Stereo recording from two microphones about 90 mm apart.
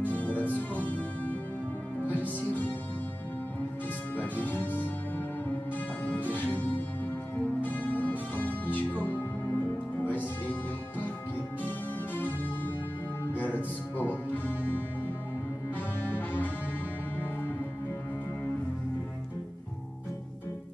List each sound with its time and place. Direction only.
0.0 s music: 20° left (ahead or behind)
4.2 s music: 20° left (ahead or behind)
6.0 s music: 20° left (ahead or behind)